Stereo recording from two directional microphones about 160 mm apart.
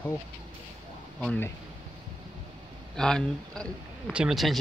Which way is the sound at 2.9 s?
5° left (ahead or behind).